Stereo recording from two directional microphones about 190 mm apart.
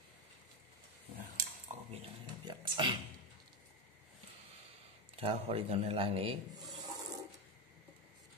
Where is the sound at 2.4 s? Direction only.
25° right (ahead or behind).